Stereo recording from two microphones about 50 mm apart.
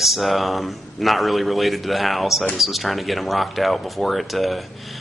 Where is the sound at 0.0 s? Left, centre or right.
Centre.